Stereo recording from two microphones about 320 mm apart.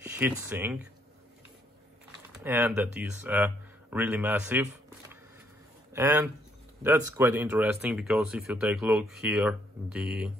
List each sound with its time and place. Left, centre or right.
0.0 s speech: centre
2.4 s speech: centre